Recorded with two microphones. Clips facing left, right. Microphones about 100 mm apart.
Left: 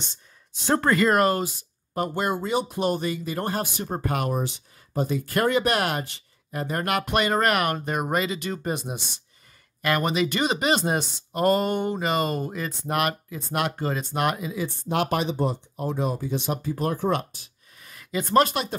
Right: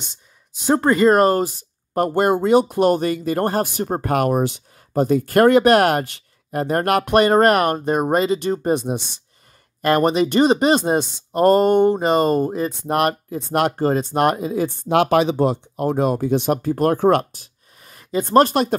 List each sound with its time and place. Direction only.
0.7 s speech: 20° right (ahead or behind)
2.0 s speech: 55° right (ahead or behind)
14.9 s speech: 90° right; by 17.3 s 60° right (ahead or behind)
17.8 s speech: 35° right (ahead or behind)